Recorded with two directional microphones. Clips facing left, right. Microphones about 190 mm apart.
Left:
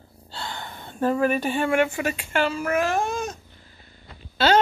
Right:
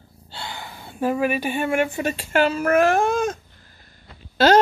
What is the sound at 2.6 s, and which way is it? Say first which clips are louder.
Speech: right 6 dB; 60° right (ahead or behind).